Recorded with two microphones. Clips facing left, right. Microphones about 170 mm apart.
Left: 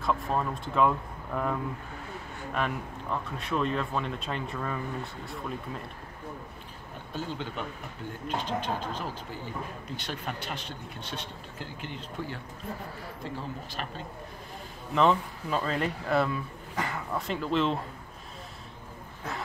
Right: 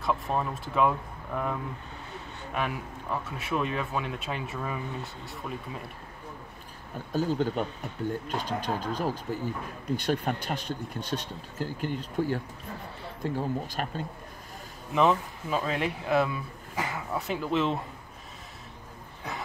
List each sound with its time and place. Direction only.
0.0 s a man's voice: centre (ahead or behind)
7.1 s speech: 40° right (ahead or behind)
15.0 s a man's voice: 5° right (ahead or behind)